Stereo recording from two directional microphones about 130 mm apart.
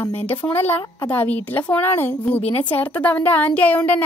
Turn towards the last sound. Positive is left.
turn(degrees=10)  # may be behind; listen again after turning